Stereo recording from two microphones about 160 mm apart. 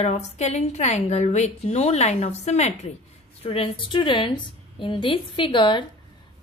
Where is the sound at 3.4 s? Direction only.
35° left (ahead or behind).